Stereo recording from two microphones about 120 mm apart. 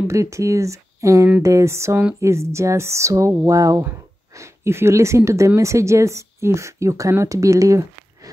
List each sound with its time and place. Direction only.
0.1 s a woman's voice: 25° right (ahead or behind)